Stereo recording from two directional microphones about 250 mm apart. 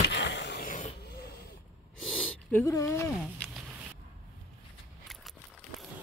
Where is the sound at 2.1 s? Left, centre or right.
Centre.